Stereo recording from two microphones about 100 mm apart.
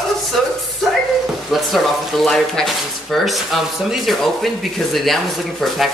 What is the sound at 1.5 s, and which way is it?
Speech, centre (ahead or behind).